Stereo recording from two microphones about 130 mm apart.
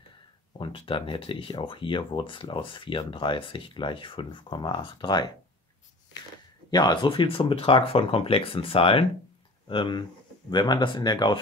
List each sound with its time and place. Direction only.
0.6 s speech: 40° left (ahead or behind)
6.7 s speech: 35° left (ahead or behind)